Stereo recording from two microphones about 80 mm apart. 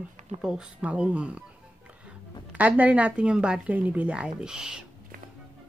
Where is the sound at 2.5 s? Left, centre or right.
Centre.